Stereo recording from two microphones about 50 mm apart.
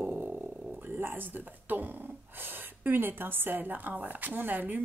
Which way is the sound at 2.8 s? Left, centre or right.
Right.